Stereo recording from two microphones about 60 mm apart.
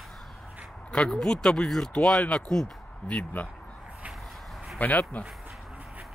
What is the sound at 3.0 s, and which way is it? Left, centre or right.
Speech, left.